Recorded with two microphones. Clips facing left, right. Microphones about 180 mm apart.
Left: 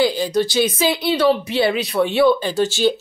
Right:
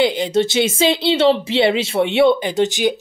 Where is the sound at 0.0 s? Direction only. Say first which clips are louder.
Right 1 dB; 25° right (ahead or behind).